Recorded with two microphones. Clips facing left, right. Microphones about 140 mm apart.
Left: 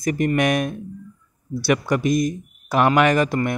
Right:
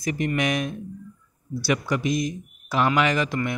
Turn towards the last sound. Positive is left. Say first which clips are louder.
# left 5 dB
turn(degrees=45)  # may be behind; listen again after turning